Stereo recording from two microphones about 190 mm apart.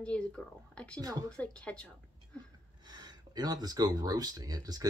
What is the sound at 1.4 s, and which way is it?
Speech, 5° left (ahead or behind).